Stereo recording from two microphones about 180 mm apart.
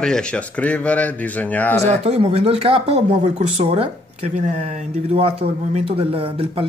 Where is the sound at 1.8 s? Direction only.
40° right (ahead or behind).